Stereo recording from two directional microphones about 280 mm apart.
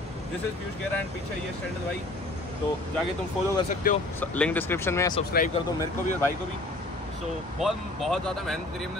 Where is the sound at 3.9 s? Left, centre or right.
Left.